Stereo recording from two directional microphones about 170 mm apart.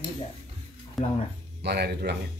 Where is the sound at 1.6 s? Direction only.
70° right (ahead or behind).